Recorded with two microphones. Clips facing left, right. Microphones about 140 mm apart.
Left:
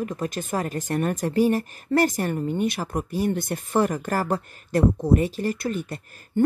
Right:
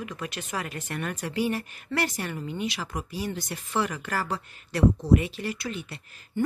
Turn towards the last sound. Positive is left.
turn(degrees=45)  # may be behind; listen again after turning